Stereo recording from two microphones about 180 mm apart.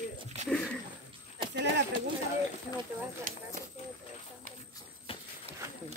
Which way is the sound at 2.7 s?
50° left (ahead or behind).